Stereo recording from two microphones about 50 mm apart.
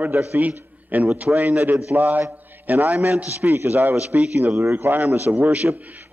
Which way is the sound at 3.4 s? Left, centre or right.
Right.